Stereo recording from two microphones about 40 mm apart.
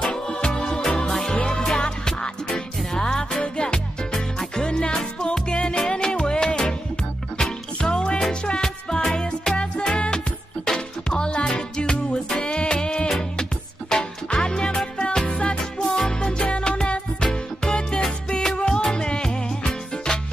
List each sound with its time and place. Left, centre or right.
0.0 s music: centre
7.8 s music: left